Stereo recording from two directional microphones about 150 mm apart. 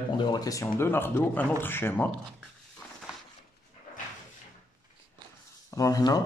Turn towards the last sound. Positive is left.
turn(degrees=25)  # may be behind; listen again after turning